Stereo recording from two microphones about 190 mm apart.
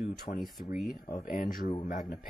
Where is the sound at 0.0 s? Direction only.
45° left (ahead or behind).